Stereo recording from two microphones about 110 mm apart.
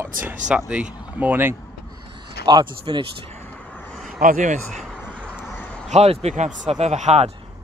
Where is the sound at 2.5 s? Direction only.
40° right (ahead or behind).